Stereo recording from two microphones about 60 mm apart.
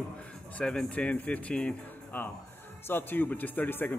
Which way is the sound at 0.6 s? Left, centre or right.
Centre.